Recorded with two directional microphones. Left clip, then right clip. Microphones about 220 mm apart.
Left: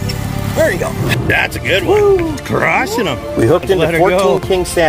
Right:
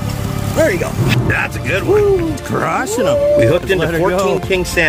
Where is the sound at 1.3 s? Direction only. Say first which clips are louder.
Left 3 dB; 30° right (ahead or behind).